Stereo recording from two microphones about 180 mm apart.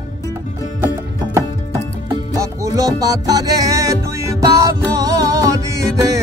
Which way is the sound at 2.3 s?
20° right (ahead or behind).